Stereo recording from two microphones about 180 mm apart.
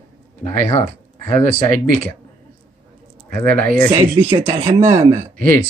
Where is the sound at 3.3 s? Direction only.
10° left (ahead or behind).